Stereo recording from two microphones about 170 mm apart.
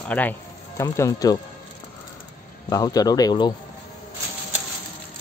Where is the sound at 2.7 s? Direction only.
20° left (ahead or behind).